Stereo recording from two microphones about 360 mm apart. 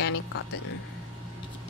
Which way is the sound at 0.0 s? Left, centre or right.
Left.